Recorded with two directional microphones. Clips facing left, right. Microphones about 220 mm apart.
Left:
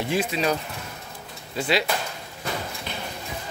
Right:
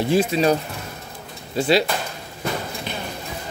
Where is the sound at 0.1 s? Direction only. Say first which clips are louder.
Right 6 dB; 35° right (ahead or behind).